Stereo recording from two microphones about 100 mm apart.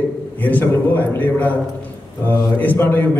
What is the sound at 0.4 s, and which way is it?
A man's voice, 15° left (ahead or behind).